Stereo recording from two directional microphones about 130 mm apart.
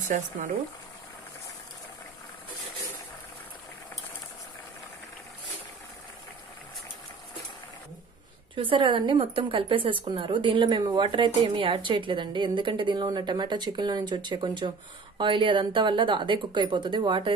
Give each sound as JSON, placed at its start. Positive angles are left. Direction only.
{"t": 0.1, "sound": "speech", "side_deg": -75}
{"t": 8.5, "sound": "a woman's voice", "side_deg": -40}